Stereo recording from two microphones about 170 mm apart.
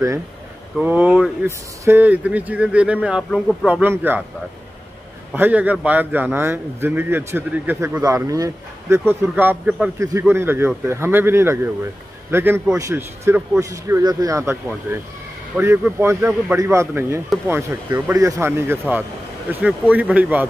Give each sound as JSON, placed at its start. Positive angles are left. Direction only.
{"t": 0.7, "sound": "a man's voice", "side_deg": -10}
{"t": 5.3, "sound": "a man's voice", "side_deg": -10}